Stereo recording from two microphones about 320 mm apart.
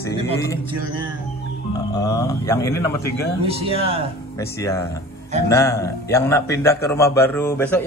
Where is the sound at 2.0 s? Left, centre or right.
Centre.